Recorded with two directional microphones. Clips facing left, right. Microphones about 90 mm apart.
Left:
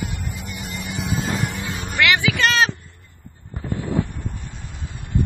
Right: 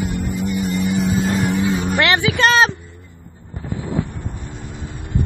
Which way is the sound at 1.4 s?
15° right (ahead or behind).